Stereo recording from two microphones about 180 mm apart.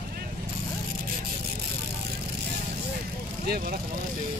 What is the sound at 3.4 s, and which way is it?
Speech, 60° right (ahead or behind).